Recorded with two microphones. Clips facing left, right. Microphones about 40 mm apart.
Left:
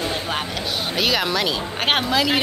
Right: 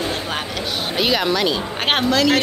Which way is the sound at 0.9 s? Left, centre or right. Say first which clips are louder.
Right 3 dB; centre.